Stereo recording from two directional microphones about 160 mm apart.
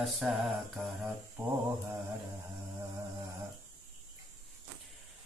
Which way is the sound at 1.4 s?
15° right (ahead or behind).